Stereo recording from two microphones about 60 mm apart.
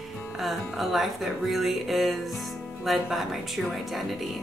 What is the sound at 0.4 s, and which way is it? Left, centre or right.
Speech, centre.